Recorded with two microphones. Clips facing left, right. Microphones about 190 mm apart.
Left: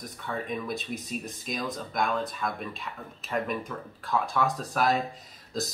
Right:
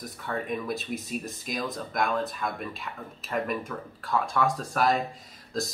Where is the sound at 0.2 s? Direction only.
Centre (ahead or behind).